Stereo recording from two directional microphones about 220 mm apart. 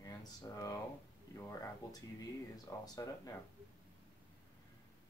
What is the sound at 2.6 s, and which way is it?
Speech, 15° left (ahead or behind).